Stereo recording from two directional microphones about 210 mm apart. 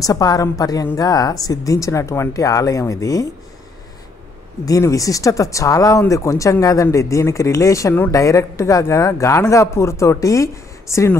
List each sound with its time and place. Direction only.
0.0 s speech: 15° left (ahead or behind)
4.6 s speech: 15° left (ahead or behind)